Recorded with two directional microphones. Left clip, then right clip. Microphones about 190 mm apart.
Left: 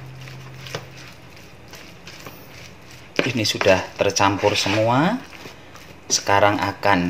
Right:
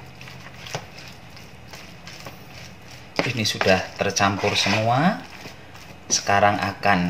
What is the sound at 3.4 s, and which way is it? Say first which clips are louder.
Speech: left 2 dB; 40° left (ahead or behind).